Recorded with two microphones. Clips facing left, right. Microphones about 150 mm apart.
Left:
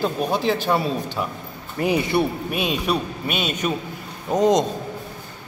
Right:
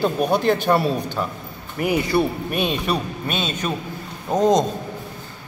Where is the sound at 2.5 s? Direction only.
5° left (ahead or behind).